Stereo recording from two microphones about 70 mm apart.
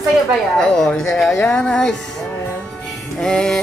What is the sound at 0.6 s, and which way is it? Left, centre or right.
Speech, centre.